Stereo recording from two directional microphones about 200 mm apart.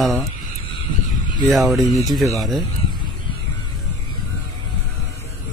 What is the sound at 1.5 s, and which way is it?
A man's voice, centre (ahead or behind).